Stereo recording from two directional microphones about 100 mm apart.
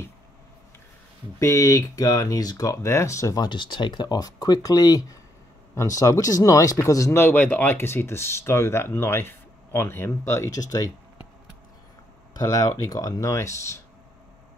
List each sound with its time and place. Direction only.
1.4 s speech: 35° left (ahead or behind)
3.4 s speech: 55° left (ahead or behind)
12.4 s speech: 35° left (ahead or behind)